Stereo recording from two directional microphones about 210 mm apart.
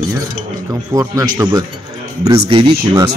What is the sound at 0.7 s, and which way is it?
Speech, 15° right (ahead or behind).